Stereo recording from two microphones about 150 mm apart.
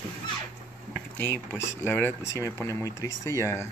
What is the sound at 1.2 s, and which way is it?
Speech, 15° left (ahead or behind).